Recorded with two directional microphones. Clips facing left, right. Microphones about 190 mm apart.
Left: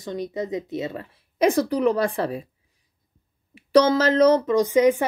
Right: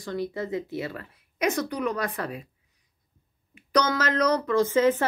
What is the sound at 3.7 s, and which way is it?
Speech, 25° left (ahead or behind).